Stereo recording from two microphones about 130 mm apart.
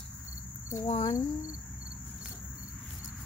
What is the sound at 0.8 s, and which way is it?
Speech, 45° left (ahead or behind).